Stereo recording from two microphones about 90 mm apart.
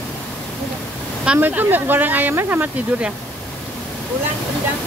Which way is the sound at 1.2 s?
15° right (ahead or behind).